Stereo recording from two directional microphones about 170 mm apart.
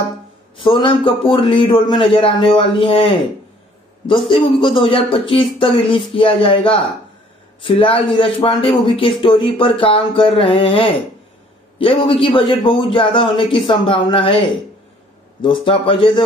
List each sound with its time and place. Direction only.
0.6 s speech: 30° left (ahead or behind)
15.4 s speech: 30° left (ahead or behind)